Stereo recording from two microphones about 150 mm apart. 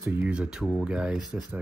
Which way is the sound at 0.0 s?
15° right (ahead or behind).